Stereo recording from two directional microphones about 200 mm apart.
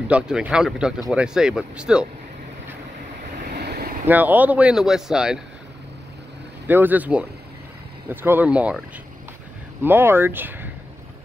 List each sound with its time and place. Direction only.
0.1 s speech: 5° right (ahead or behind)
3.5 s vehicle: 55° right (ahead or behind)
4.1 s speech: 10° right (ahead or behind)
6.7 s speech: 10° right (ahead or behind)
9.8 s speech: 10° right (ahead or behind)